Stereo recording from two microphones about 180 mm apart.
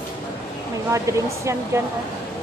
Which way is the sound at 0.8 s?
15° right (ahead or behind).